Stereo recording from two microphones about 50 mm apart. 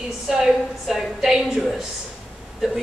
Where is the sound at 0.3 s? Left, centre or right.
Centre.